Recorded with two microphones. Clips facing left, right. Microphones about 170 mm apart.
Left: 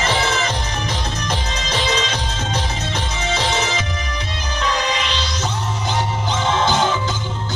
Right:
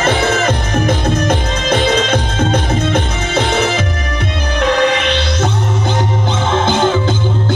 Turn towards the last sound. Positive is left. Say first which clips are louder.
# right 4 dB
turn(degrees=-55)  # may be behind; listen again after turning